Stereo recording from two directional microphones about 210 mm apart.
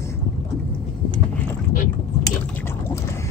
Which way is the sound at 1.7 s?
40° left (ahead or behind).